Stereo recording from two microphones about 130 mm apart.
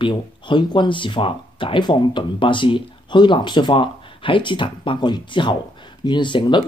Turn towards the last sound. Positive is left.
turn(degrees=35)  # may be behind; listen again after turning